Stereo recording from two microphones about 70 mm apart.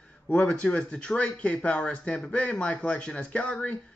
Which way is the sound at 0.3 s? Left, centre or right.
Centre.